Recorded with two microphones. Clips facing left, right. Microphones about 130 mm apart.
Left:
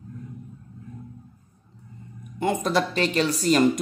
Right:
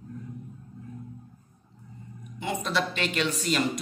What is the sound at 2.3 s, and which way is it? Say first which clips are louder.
Speech: left 6 dB; 45° left (ahead or behind).